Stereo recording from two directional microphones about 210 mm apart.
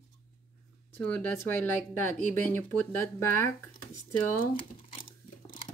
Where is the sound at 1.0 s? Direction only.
10° left (ahead or behind).